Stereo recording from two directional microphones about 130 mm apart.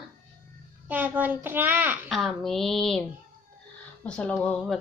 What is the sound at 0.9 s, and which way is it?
A child's voice, 15° right (ahead or behind).